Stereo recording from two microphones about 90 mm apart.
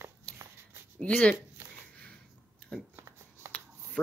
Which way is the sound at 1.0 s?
15° left (ahead or behind).